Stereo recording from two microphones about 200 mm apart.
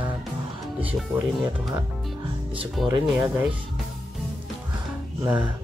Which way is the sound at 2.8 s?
Centre (ahead or behind).